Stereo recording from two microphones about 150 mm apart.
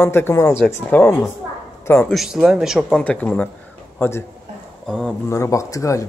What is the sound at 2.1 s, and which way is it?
Speech, centre (ahead or behind).